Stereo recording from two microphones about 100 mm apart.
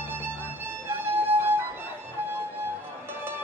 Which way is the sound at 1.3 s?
20° right (ahead or behind).